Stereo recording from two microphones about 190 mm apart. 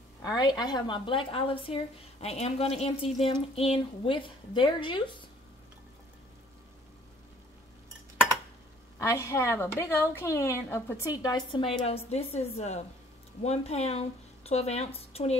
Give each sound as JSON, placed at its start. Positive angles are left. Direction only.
{"t": 0.2, "sound": "a woman's voice", "side_deg": 20}
{"t": 8.9, "sound": "a woman's voice", "side_deg": 15}
{"t": 11.2, "sound": "a woman's voice", "side_deg": 25}